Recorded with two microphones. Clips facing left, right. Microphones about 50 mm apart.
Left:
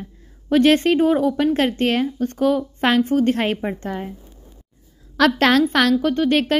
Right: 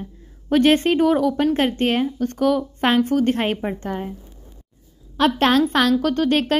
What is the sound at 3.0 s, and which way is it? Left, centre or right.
Speech, right.